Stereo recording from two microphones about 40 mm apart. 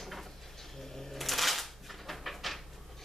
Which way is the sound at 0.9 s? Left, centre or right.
Centre.